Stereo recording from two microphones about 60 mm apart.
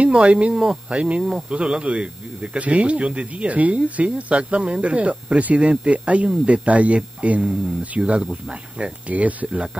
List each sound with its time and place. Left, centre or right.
0.0 s speech: centre